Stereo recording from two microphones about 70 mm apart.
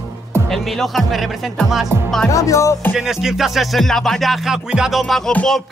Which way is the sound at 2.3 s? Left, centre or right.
Left.